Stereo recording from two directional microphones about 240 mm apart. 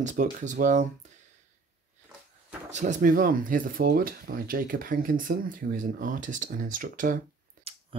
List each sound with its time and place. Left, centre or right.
0.0 s speech: right
2.7 s speech: right
7.7 s a sound: right